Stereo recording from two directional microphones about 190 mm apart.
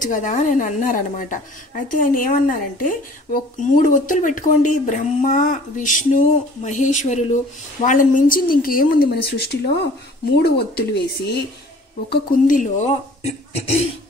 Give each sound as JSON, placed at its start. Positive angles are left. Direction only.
{"t": 0.0, "sound": "a woman's voice", "side_deg": 45}
{"t": 12.1, "sound": "speech", "side_deg": 45}